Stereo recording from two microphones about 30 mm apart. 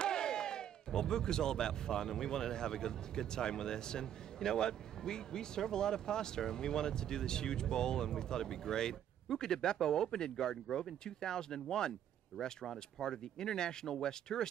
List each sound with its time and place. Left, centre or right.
0.0 s speech: left